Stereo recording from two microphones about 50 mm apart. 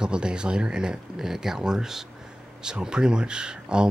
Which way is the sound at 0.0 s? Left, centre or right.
Centre.